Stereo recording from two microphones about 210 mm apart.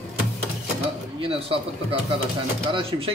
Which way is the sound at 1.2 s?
25° right (ahead or behind).